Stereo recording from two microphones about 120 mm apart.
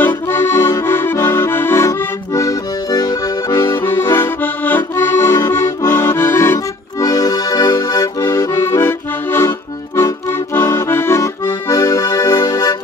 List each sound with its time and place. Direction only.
0.0 s accordion: 20° left (ahead or behind)
3.8 s accordion: 20° left (ahead or behind)